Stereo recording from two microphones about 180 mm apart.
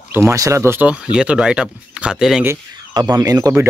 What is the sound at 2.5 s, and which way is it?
Speech, 20° right (ahead or behind).